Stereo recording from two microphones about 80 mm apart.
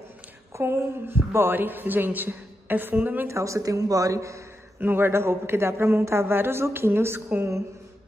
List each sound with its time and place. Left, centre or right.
0.6 s a woman's voice: right
3.3 s speech: right
4.7 s speech: right